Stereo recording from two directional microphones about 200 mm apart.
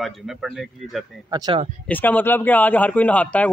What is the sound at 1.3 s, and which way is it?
Speech, 20° right (ahead or behind).